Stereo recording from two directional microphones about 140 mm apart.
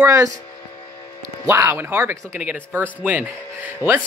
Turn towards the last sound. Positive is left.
turn(degrees=-15)  # may be behind; listen again after turning